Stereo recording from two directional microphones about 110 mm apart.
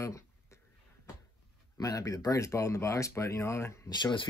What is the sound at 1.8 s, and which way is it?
Speech, 35° left (ahead or behind).